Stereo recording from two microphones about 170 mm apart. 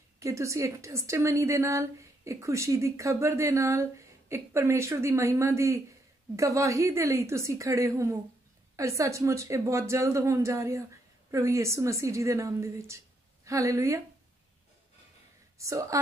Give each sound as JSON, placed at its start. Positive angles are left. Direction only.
{"t": 0.2, "sound": "a woman's voice", "side_deg": -15}
{"t": 15.6, "sound": "speech", "side_deg": -20}